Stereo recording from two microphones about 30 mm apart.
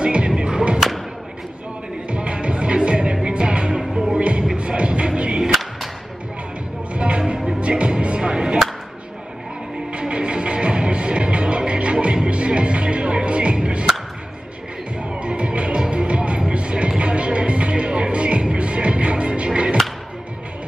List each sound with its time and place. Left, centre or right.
0.0 s music: right
0.7 s thump: centre
2.0 s music: right
4.2 s music: right
6.9 s music: right
9.9 s music: right
15.0 s music: right